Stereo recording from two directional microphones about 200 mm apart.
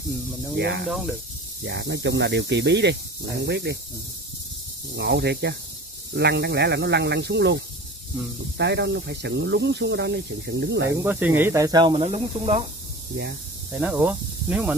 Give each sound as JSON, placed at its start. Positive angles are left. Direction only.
{"t": 0.6, "sound": "speech", "side_deg": -60}
{"t": 4.9, "sound": "speech", "side_deg": -55}
{"t": 11.0, "sound": "speech", "side_deg": -10}
{"t": 13.1, "sound": "speech", "side_deg": -60}
{"t": 13.7, "sound": "speech", "side_deg": -10}